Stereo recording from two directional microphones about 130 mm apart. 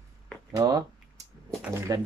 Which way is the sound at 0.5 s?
25° right (ahead or behind).